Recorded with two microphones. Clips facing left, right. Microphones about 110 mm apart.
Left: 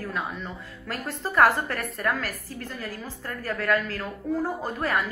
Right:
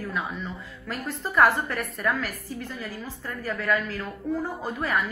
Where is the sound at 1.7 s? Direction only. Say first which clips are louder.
Even; 45° left (ahead or behind).